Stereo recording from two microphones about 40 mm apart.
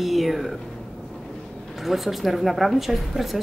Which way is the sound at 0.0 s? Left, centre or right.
Centre.